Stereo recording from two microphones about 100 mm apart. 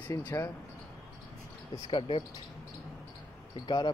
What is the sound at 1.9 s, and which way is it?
Speech, 60° left (ahead or behind).